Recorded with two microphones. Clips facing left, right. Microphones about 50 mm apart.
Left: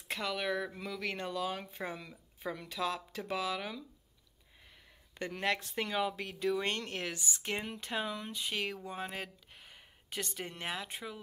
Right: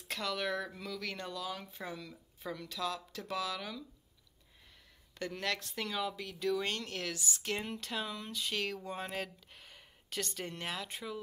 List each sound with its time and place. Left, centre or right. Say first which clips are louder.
0.1 s speech: left 1 dB; centre
5.1 s speech: left 3 dB; left